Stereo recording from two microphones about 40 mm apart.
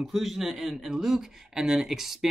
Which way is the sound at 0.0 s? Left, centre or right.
Centre.